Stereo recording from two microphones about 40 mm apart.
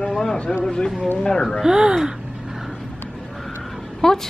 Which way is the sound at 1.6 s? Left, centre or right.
Centre.